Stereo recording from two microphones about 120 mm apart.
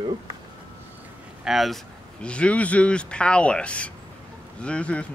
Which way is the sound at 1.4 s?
Centre (ahead or behind).